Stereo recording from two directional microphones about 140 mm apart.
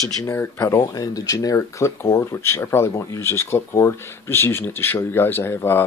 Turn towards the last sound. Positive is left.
turn(degrees=15)  # may be behind; listen again after turning